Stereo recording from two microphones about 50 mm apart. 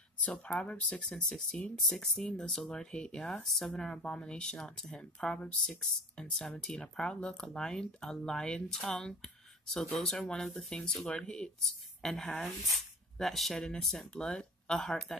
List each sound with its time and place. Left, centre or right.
0.2 s speech: left
6.1 s speech: centre
11.6 s speech: centre